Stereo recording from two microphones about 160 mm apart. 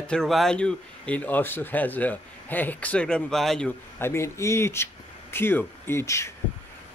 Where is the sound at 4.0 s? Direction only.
15° left (ahead or behind).